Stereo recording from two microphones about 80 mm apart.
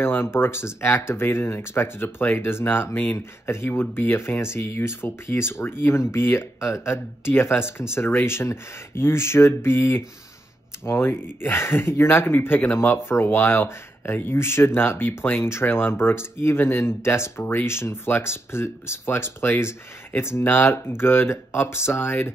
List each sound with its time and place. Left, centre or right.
0.0 s speech: left